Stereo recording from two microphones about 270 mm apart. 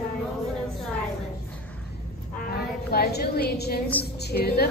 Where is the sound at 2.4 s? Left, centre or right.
Left.